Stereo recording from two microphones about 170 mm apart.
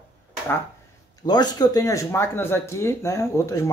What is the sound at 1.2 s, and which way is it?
A man's voice, 25° left (ahead or behind).